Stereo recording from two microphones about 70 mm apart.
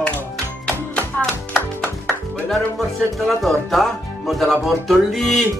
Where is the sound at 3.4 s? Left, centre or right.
Centre.